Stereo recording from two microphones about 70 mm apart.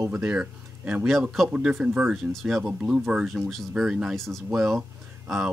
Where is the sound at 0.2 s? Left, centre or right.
Centre.